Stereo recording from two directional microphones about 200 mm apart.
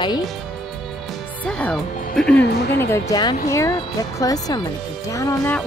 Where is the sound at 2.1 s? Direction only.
5° left (ahead or behind).